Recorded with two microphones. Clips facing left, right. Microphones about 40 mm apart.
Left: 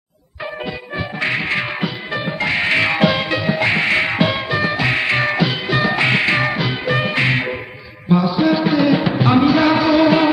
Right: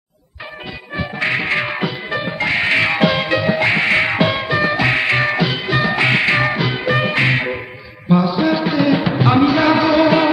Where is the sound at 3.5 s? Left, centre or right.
Right.